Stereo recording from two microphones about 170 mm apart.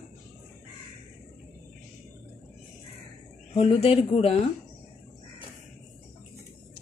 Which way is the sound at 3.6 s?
35° left (ahead or behind).